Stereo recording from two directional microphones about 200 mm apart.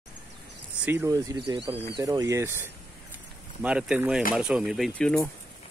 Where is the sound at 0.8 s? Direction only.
15° right (ahead or behind).